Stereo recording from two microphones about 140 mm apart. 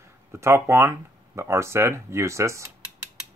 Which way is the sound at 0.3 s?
20° right (ahead or behind).